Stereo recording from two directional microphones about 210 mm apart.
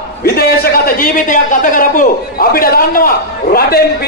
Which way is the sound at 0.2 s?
50° left (ahead or behind).